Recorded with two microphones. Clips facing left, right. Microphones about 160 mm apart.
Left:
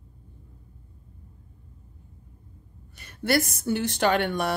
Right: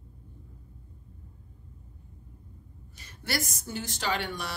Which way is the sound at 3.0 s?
60° left (ahead or behind).